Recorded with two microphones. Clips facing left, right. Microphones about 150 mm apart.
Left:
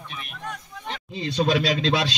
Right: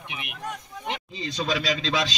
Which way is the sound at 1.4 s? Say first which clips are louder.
Left 4 dB; 50° left (ahead or behind).